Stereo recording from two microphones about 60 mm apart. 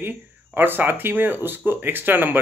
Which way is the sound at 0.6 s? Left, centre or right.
Right.